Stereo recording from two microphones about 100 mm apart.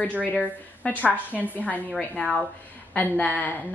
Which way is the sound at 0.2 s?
15° left (ahead or behind).